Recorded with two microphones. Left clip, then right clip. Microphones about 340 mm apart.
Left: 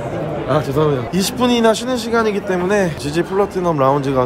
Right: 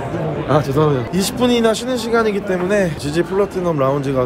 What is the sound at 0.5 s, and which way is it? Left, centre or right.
A man's voice, centre.